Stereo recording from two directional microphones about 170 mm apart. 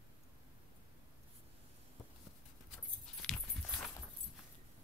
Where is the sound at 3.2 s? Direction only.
5° left (ahead or behind).